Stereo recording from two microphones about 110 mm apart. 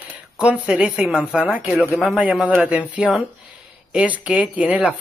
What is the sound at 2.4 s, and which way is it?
Speech, 10° right (ahead or behind).